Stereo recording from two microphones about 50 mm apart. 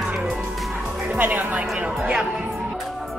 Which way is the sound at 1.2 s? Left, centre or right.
Right.